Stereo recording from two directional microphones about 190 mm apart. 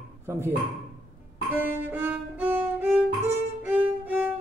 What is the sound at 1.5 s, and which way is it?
Music, 10° right (ahead or behind).